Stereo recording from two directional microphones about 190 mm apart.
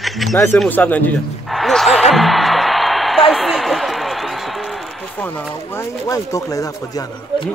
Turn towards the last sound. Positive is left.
turn(degrees=20)  # may be behind; listen again after turning